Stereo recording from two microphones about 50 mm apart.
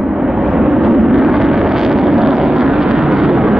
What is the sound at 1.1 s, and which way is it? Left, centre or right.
Vehicle, centre.